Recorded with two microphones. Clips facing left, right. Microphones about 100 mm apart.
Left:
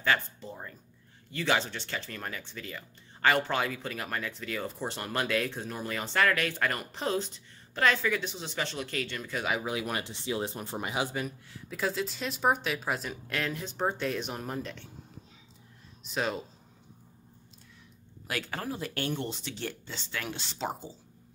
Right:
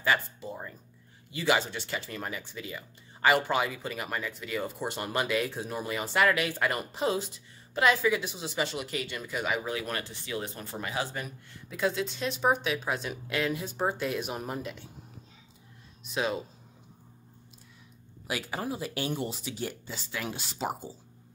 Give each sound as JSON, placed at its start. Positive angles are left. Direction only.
{"t": 0.0, "sound": "speech", "side_deg": -10}
{"t": 9.7, "sound": "speech", "side_deg": 15}
{"t": 11.2, "sound": "speech", "side_deg": 0}
{"t": 16.0, "sound": "speech", "side_deg": 0}
{"t": 18.2, "sound": "speech", "side_deg": -10}